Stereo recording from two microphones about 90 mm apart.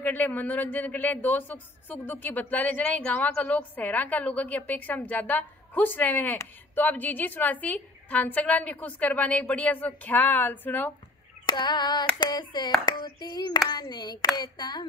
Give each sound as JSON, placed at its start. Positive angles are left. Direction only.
{"t": 0.0, "sound": "speech", "side_deg": 20}
{"t": 11.4, "sound": "female singing", "side_deg": 55}
{"t": 12.2, "sound": "a sound", "side_deg": 55}